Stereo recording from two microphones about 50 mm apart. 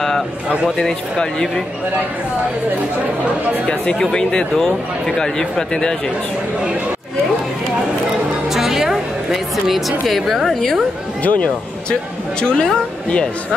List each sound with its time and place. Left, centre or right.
0.7 s speech: centre
3.6 s speech: centre
8.5 s a woman's voice: centre
11.2 s speech: left